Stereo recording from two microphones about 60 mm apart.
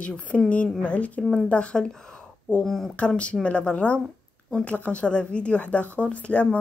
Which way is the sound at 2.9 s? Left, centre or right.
Left.